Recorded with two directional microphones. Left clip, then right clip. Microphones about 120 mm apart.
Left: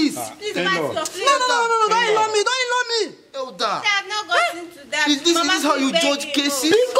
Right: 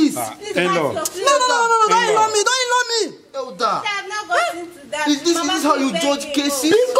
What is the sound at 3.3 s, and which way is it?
Speech, 10° left (ahead or behind).